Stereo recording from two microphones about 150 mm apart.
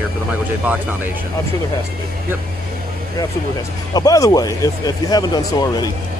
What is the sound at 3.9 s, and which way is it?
Speech, 25° left (ahead or behind).